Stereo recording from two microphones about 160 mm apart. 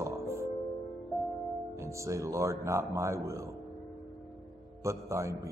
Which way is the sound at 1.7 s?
20° right (ahead or behind).